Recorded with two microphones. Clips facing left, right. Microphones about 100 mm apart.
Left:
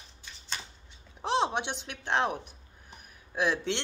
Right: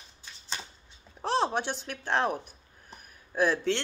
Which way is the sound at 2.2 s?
45° right (ahead or behind).